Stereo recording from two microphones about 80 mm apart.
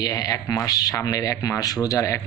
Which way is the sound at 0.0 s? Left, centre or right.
Left.